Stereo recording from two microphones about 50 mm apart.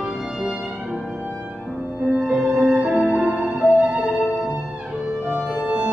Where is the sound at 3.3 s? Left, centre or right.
Centre.